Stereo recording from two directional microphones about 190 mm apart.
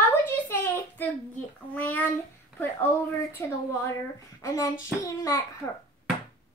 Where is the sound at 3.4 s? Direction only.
15° left (ahead or behind).